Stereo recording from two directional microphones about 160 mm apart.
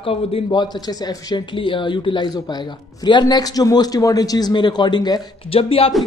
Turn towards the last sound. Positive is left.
turn(degrees=35)  # may be behind; listen again after turning